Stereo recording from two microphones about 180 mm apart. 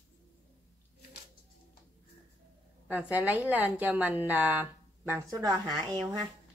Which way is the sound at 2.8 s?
10° right (ahead or behind).